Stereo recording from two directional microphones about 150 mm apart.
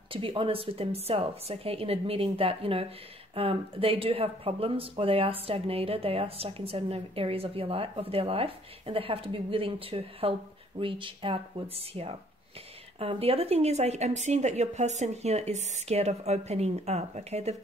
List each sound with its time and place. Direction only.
0.1 s speech: 35° right (ahead or behind)